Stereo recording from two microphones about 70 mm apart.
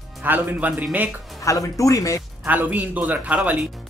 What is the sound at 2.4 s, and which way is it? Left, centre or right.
Speech, right.